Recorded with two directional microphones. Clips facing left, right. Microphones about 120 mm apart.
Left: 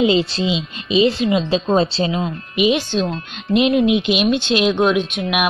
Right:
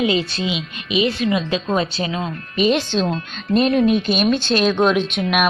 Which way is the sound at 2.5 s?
10° left (ahead or behind).